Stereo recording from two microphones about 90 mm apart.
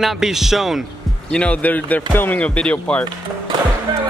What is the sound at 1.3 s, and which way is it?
Speech, 15° left (ahead or behind).